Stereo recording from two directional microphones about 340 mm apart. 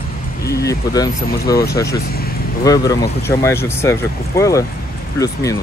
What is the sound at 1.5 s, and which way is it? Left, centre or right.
Speech, left.